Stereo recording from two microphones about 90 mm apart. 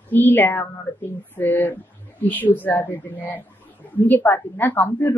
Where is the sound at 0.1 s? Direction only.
20° left (ahead or behind).